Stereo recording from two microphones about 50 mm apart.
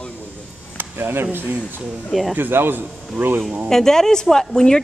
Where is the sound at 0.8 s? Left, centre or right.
Right.